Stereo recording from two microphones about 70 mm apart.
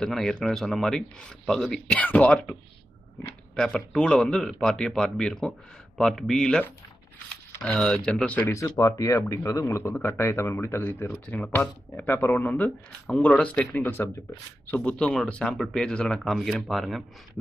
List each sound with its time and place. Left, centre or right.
0.0 s speech: centre
2.0 s speech: left
3.5 s speech: centre
7.6 s speech: centre
8.5 s speech: left
11.1 s speech: centre
12.1 s speech: left
13.2 s speech: centre
13.8 s speech: left
14.7 s speech: centre
16.3 s speech: centre